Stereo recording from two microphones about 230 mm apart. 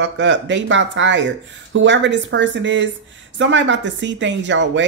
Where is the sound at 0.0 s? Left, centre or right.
Right.